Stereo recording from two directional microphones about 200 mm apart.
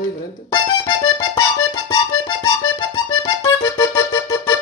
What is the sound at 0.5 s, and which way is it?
Music, 20° left (ahead or behind).